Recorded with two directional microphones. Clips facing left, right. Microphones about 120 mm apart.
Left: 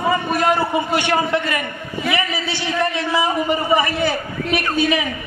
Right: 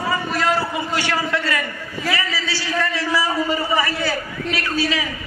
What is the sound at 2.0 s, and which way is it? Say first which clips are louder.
A man's voice: left 2 dB; 20° left (ahead or behind).